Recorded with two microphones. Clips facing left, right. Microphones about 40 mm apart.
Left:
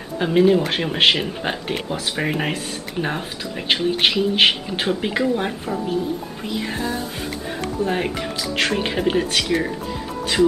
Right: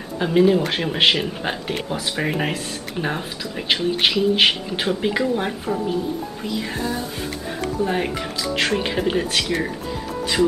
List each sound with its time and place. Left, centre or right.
0.2 s speech: centre
6.4 s music: centre
7.8 s speech: centre